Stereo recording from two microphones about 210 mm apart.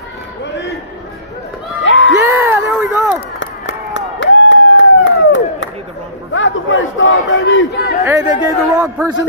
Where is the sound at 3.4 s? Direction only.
60° left (ahead or behind).